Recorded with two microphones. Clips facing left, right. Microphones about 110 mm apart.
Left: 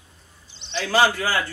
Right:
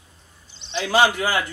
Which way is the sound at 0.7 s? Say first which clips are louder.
Right 1 dB; 20° right (ahead or behind).